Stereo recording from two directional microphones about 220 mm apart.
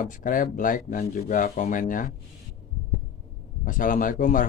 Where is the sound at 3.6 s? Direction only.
35° left (ahead or behind).